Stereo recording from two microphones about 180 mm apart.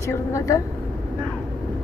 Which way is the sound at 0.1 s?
15° left (ahead or behind).